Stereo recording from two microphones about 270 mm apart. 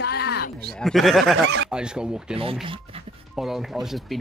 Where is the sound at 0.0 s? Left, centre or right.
Left.